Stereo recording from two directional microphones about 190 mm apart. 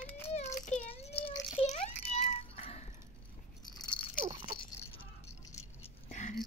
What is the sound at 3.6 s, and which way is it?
Rattle, 25° left (ahead or behind).